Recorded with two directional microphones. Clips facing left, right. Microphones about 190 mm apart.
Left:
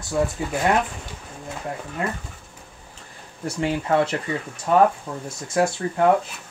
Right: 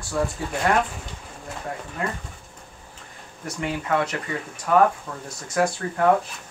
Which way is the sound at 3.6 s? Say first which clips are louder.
Left 4 dB; 30° left (ahead or behind).